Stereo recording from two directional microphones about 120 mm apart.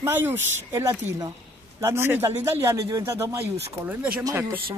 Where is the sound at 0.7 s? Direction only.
30° right (ahead or behind).